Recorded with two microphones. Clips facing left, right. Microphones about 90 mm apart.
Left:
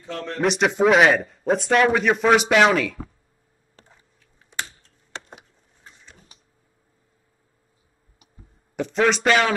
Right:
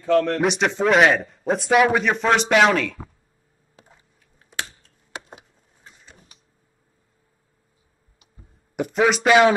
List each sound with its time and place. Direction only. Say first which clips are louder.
0.0 s a man's voice: right 13 dB; 60° right (ahead or behind)
0.4 s a man's voice: left 1 dB; centre (ahead or behind)
5.1 s a sound: right 1 dB; 10° right (ahead or behind)
8.7 s speech: right 1 dB; 10° right (ahead or behind)